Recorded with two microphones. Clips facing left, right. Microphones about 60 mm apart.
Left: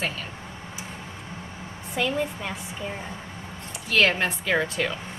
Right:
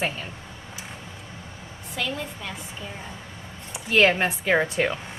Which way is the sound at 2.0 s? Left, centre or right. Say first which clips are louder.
Left 4 dB; left.